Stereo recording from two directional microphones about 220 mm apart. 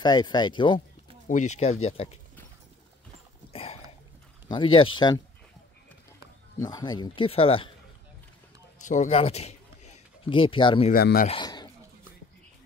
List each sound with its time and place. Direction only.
0.0 s speech: 20° left (ahead or behind)
1.2 s speech: 35° left (ahead or behind)
3.5 s a sound: 30° left (ahead or behind)
4.7 s speech: 20° left (ahead or behind)
6.6 s speech: 20° left (ahead or behind)
8.8 s speech: 35° left (ahead or behind)
10.9 s speech: 40° left (ahead or behind)
11.2 s pigeon: 20° left (ahead or behind)